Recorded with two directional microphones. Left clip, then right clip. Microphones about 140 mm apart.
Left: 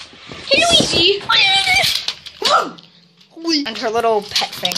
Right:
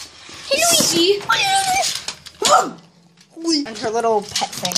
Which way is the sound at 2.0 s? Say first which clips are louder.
Left 2 dB; 90° right.